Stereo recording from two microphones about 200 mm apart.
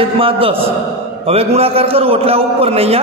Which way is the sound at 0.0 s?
25° right (ahead or behind).